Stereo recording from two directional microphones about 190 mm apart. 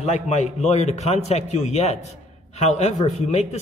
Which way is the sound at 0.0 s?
35° left (ahead or behind).